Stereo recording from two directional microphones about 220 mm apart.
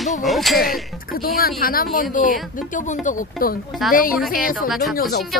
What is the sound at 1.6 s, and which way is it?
Speech, 40° left (ahead or behind).